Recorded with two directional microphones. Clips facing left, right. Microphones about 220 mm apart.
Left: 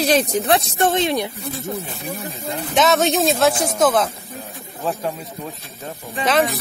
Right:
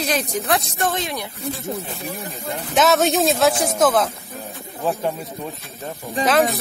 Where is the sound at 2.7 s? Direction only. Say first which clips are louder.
Even; centre (ahead or behind).